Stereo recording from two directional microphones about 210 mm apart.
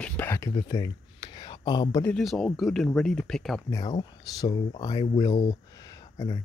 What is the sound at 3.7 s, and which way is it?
Speech, 20° left (ahead or behind).